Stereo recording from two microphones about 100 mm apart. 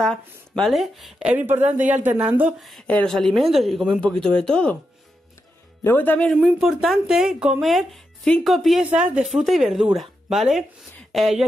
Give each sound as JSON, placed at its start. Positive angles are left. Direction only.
{"t": 0.0, "sound": "speech", "side_deg": 5}
{"t": 1.2, "sound": "speech", "side_deg": -15}
{"t": 2.6, "sound": "speech", "side_deg": 0}
{"t": 5.9, "sound": "speech", "side_deg": 20}
{"t": 6.4, "sound": "speech", "side_deg": -5}
{"t": 8.9, "sound": "speech", "side_deg": -10}